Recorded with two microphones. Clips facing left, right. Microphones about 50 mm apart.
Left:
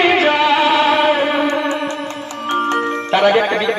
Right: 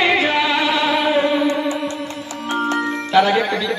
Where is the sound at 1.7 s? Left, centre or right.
Left.